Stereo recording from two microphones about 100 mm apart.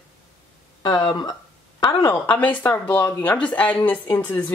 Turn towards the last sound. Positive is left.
turn(degrees=15)  # may be behind; listen again after turning